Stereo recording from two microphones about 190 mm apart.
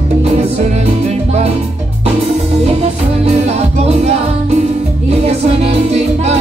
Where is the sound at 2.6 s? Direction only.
30° right (ahead or behind).